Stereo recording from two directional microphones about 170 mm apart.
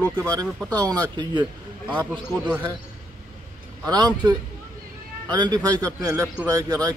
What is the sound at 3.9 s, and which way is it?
A man's voice, 25° right (ahead or behind).